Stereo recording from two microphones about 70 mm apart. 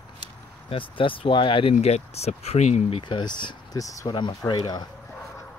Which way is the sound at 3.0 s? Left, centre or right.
Left.